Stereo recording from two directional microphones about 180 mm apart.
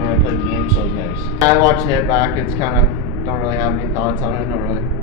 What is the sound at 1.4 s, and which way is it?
Speech, 20° right (ahead or behind).